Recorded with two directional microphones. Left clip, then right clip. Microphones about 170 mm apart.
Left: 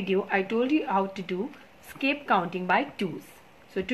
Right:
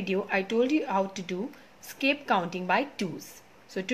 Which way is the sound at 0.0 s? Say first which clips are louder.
Left 2 dB; 10° right (ahead or behind).